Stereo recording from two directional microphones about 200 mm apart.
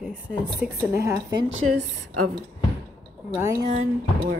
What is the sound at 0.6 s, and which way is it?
Speech, 15° right (ahead or behind).